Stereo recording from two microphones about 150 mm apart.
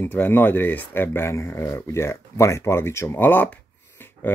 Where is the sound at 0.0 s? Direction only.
15° left (ahead or behind).